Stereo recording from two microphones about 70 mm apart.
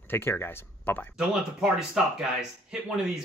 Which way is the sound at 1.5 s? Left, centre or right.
Centre.